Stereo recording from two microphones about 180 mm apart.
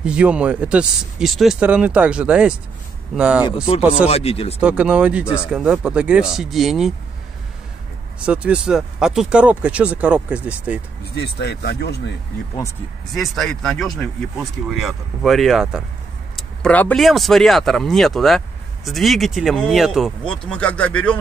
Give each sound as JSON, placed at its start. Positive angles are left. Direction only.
{"t": 0.0, "sound": "speech", "side_deg": -5}
{"t": 4.1, "sound": "speech", "side_deg": 35}
{"t": 4.6, "sound": "speech", "side_deg": -5}
{"t": 5.2, "sound": "speech", "side_deg": 15}
{"t": 5.5, "sound": "speech", "side_deg": -5}
{"t": 8.3, "sound": "speech", "side_deg": -5}
{"t": 11.1, "sound": "speech", "side_deg": 70}
{"t": 13.1, "sound": "speech", "side_deg": 0}